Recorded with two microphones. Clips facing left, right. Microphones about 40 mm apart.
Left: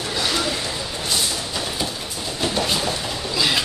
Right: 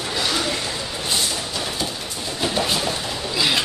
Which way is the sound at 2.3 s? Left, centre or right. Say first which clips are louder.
Even; centre.